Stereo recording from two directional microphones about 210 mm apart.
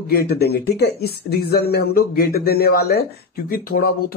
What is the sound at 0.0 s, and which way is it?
Speech, 45° left (ahead or behind).